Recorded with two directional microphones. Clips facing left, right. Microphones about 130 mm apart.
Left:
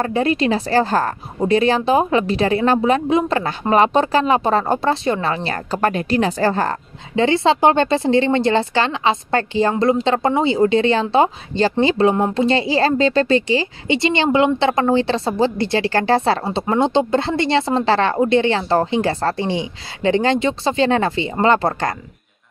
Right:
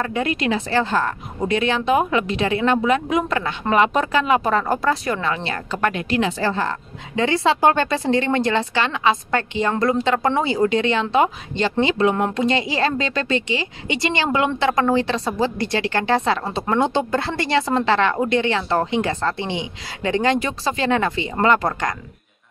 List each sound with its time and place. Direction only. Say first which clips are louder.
0.0 s speech: left 4 dB; 35° left (ahead or behind)
7.2 s speech: left 3 dB; 30° left (ahead or behind)
16.5 s speech: left 3 dB; 25° left (ahead or behind)